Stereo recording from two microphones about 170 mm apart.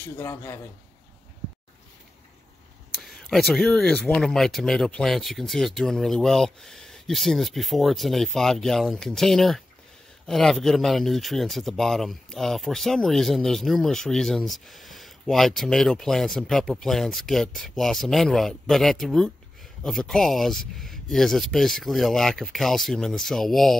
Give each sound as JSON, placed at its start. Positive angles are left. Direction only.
{"t": 0.2, "sound": "a man's voice", "side_deg": 20}
{"t": 3.0, "sound": "speech", "side_deg": 0}